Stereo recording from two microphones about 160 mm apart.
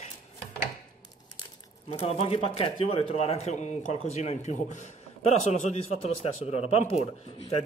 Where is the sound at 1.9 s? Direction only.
40° left (ahead or behind).